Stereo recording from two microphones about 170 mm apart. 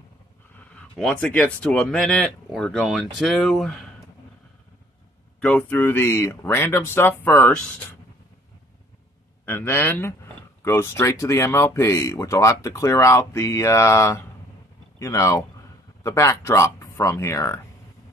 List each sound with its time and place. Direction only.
0.7 s speech: 5° left (ahead or behind)
5.6 s speech: 10° left (ahead or behind)
9.5 s speech: 15° left (ahead or behind)